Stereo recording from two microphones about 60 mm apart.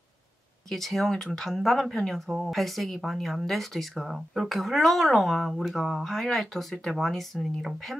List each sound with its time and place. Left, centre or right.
0.7 s speech: centre